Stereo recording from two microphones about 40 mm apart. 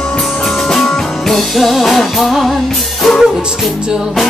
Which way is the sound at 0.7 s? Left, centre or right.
Centre.